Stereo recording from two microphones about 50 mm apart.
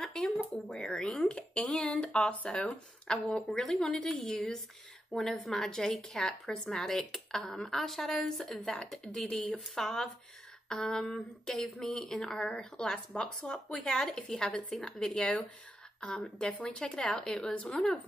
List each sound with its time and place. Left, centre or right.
0.0 s a sound: centre
0.7 s a woman's voice: centre
9.0 s a woman's voice: centre
17.6 s speech: left